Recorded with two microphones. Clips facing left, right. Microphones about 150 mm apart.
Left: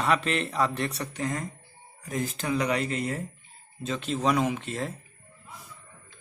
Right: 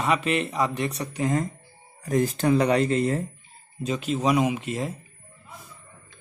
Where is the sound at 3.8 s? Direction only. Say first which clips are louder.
Right 3 dB; 10° right (ahead or behind).